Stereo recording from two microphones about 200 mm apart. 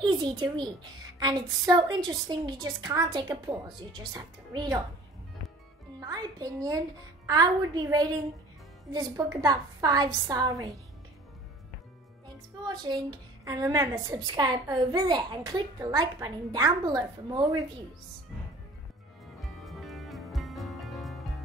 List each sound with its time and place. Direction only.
0.0 s a woman's voice: 20° right (ahead or behind)
5.9 s a child's voice: 20° right (ahead or behind)
12.8 s a woman's voice: 20° right (ahead or behind)
19.4 s music: centre (ahead or behind)